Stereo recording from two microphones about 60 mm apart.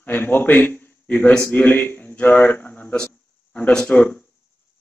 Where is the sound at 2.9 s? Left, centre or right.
Centre.